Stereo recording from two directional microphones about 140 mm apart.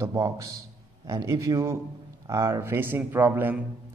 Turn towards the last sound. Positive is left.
turn(degrees=-15)  # may be behind; listen again after turning